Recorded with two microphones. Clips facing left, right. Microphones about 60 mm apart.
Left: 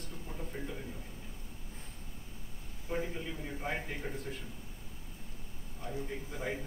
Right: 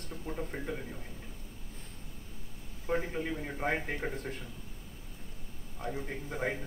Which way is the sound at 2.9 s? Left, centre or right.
Right.